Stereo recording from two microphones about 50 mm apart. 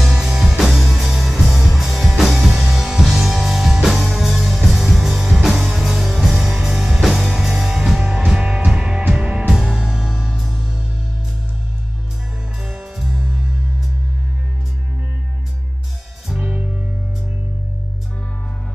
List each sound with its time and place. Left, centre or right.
0.1 s music: centre
12.9 s music: centre
16.3 s music: centre